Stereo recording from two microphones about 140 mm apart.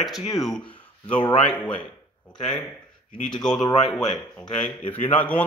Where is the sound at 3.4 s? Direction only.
5° left (ahead or behind).